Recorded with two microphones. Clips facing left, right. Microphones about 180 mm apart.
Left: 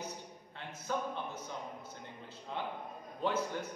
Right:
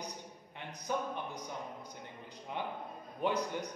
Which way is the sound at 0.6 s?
15° right (ahead or behind).